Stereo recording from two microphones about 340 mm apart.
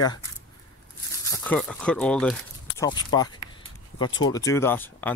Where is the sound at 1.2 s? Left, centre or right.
Centre.